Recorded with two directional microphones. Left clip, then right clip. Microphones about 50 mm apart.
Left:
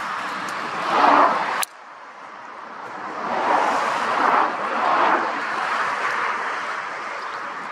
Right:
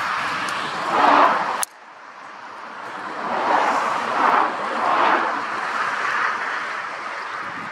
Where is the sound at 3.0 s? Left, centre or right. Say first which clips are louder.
Even; right.